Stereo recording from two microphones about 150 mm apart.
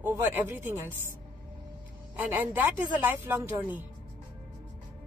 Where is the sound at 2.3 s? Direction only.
10° right (ahead or behind).